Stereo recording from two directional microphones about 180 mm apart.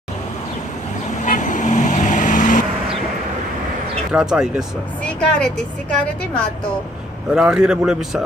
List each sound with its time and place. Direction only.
1.2 s vehicle: 45° left (ahead or behind)
4.1 s speech: 5° right (ahead or behind)
7.3 s speech: 5° right (ahead or behind)